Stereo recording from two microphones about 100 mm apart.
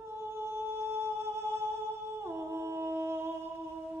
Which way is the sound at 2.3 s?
25° right (ahead or behind).